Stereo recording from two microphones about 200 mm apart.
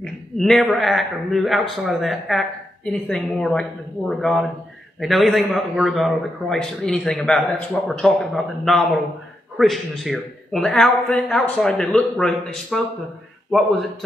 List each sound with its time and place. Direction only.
0.0 s a man's voice: centre (ahead or behind)